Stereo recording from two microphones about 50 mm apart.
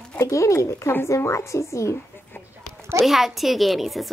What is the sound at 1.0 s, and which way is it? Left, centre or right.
Speech, left.